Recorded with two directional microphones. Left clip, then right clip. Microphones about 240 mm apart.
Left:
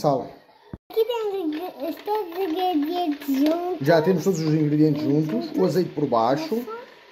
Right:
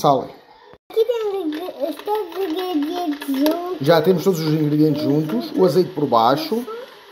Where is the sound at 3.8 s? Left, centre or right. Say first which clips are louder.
Right 5 dB; centre.